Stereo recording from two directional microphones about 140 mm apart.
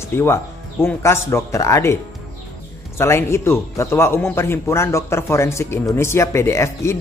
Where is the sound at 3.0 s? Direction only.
20° left (ahead or behind).